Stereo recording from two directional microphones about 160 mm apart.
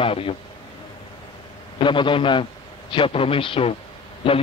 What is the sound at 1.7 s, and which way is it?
A man's voice, 30° left (ahead or behind).